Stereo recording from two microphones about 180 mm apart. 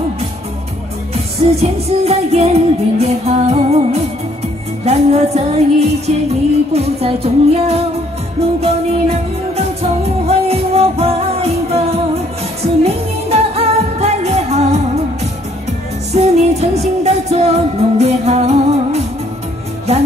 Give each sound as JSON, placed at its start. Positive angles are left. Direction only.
{"t": 1.1, "sound": "music", "side_deg": -35}
{"t": 16.1, "sound": "music", "side_deg": -35}